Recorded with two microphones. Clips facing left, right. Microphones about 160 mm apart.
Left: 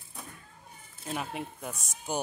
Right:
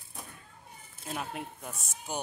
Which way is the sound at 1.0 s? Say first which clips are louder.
Left 2 dB; centre (ahead or behind).